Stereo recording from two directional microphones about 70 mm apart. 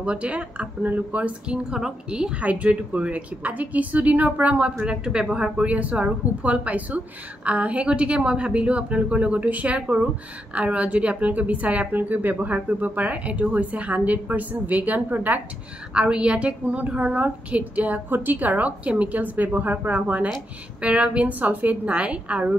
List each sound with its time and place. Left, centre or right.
0.0 s a woman's voice: centre
15.9 s a woman's voice: centre